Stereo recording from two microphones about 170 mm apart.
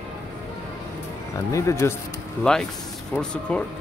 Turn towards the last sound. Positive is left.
turn(degrees=5)  # may be behind; listen again after turning